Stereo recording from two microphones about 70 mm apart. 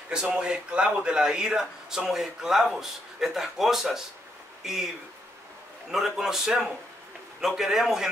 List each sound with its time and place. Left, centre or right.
0.1 s a man's voice: centre
5.9 s a man's voice: centre